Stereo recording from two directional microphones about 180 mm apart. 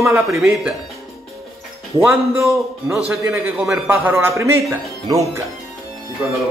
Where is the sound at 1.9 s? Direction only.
5° right (ahead or behind).